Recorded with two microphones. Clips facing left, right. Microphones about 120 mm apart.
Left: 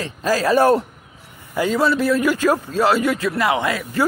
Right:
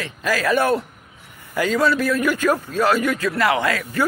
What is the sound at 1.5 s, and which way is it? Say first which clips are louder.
A man's voice: left 1 dB; 20° left (ahead or behind).